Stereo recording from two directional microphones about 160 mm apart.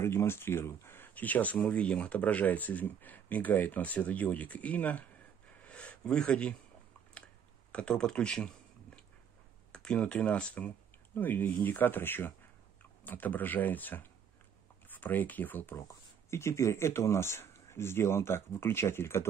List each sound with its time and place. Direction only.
0.0 s speech: 15° left (ahead or behind)
5.6 s a sound: 10° left (ahead or behind)
7.7 s speech: 5° left (ahead or behind)
9.7 s speech: 5° left (ahead or behind)